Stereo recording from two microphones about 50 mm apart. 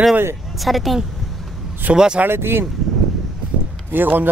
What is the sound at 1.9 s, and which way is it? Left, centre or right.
Speech, right.